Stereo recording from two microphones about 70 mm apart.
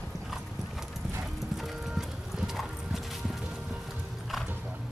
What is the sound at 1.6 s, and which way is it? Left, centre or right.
Clip-clop, centre.